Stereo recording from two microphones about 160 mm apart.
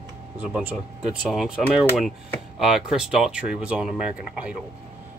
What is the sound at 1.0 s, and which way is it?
Speech, 5° right (ahead or behind).